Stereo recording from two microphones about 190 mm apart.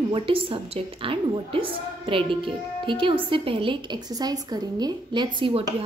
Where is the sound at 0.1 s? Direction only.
30° right (ahead or behind).